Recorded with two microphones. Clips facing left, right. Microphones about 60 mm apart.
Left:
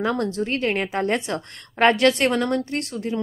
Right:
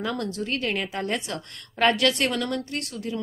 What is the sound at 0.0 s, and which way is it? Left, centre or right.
A woman's voice, left.